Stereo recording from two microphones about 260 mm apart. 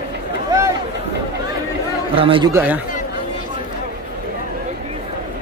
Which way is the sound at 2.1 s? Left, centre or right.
Right.